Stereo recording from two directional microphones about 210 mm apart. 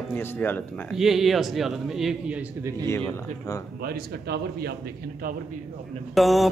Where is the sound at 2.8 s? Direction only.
10° left (ahead or behind).